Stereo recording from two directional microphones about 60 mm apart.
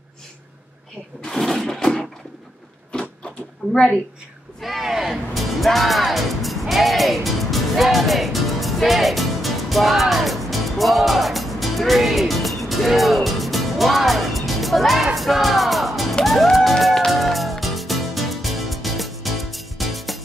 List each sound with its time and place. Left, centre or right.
1.2 s a sound: centre
3.6 s a woman's voice: right
4.6 s music: centre